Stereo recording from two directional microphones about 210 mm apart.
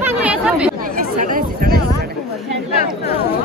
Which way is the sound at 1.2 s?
40° right (ahead or behind).